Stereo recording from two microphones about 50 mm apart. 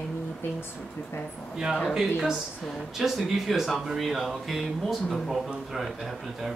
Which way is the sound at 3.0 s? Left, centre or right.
Centre.